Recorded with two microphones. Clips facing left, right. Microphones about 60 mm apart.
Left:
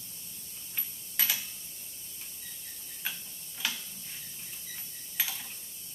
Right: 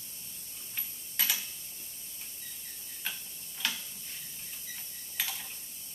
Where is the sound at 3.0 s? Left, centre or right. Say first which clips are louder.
Left 1 dB; centre.